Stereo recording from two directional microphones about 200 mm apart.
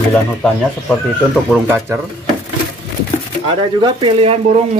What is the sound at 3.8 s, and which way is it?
Speech, 30° right (ahead or behind).